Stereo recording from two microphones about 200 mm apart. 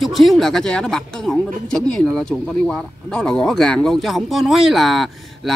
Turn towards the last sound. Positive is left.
turn(degrees=0)  # may be behind; listen again after turning